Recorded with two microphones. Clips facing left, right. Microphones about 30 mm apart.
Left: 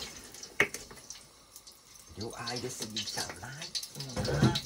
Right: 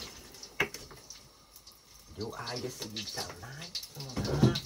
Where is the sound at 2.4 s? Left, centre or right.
Left.